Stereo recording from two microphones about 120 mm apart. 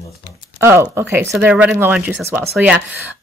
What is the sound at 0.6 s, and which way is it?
Speech, 20° right (ahead or behind).